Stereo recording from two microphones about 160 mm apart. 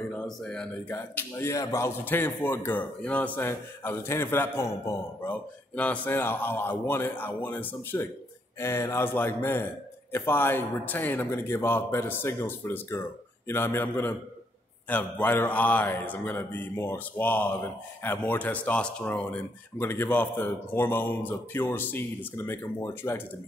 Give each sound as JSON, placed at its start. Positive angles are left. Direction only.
{"t": 0.1, "sound": "speech", "side_deg": 5}